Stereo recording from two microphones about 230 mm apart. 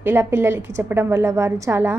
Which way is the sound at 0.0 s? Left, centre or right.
Centre.